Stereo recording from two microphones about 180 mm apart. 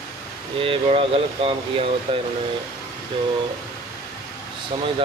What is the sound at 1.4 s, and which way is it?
Speech, 30° right (ahead or behind).